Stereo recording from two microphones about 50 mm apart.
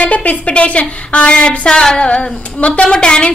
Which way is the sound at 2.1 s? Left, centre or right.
Left.